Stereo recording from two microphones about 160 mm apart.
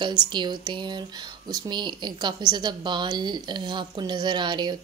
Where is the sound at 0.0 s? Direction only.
25° right (ahead or behind).